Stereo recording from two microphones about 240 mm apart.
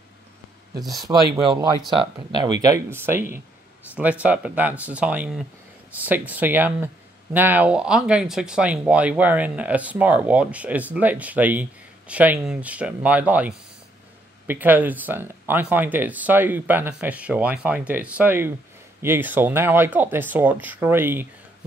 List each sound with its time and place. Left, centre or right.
1.3 s speech: centre